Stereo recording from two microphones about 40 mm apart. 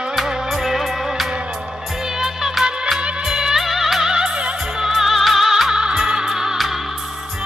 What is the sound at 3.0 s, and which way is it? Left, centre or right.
Music of bollywood, right.